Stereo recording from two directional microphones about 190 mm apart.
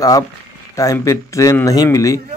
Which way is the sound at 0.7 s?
15° left (ahead or behind).